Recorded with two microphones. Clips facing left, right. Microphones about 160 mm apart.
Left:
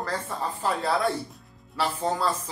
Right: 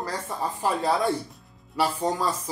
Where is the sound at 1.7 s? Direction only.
15° right (ahead or behind).